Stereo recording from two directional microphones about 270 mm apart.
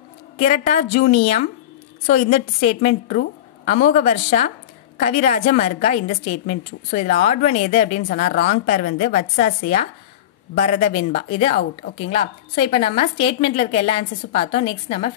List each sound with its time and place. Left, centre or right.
0.4 s a woman's voice: left